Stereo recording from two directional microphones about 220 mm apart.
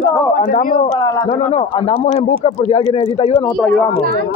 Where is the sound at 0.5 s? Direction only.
40° left (ahead or behind).